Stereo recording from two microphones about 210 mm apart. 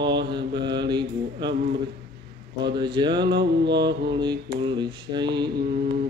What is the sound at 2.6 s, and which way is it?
Mantra, 20° right (ahead or behind).